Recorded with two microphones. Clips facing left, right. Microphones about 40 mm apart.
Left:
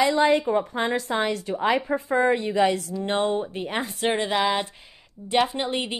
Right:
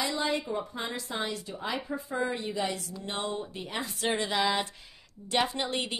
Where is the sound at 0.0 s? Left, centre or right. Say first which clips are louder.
Left 11 dB; left.